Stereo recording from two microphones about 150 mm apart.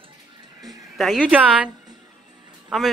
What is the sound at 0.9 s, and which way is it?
Speech, centre (ahead or behind).